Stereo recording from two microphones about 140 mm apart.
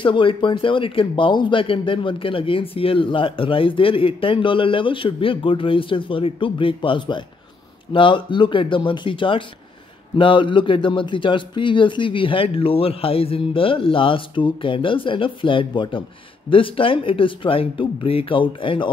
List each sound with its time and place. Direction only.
0.0 s speech: 35° left (ahead or behind)